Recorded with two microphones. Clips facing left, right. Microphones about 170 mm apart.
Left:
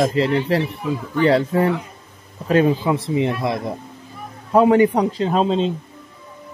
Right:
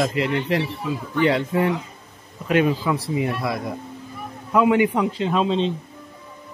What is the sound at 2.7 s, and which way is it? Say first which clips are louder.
Speech: left 3 dB; 25° left (ahead or behind).